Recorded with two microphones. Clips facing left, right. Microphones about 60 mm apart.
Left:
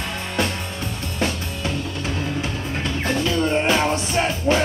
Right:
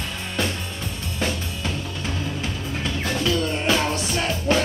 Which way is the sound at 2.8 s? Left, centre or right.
Left.